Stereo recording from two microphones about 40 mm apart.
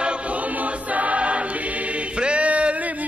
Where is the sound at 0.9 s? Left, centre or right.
Right.